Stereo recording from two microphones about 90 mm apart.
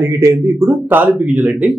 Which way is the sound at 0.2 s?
30° right (ahead or behind).